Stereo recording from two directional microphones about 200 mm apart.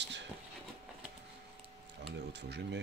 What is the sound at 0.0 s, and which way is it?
Train, 60° right (ahead or behind).